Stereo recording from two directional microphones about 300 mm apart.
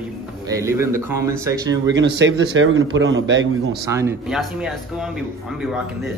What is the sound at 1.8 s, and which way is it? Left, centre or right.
A man's voice, right.